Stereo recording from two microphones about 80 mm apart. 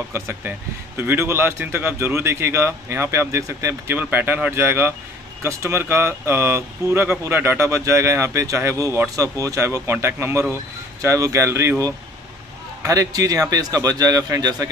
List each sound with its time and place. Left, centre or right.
0.1 s speech: right
3.9 s speech: right
12.8 s speech: right